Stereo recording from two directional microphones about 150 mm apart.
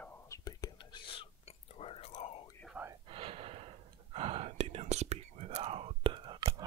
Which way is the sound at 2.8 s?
10° right (ahead or behind).